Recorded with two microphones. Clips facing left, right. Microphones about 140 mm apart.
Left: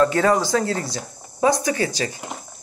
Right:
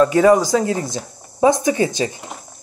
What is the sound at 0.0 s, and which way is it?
Speech, 15° right (ahead or behind).